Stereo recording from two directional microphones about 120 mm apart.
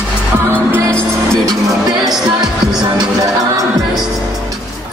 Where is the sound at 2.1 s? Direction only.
5° right (ahead or behind).